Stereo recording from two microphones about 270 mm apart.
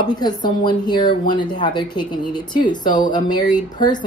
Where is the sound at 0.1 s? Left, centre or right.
Centre.